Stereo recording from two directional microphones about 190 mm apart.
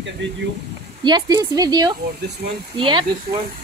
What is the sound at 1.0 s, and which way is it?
Speech, 20° right (ahead or behind).